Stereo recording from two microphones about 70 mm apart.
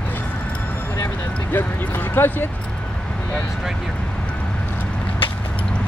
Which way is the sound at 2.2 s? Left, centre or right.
Left.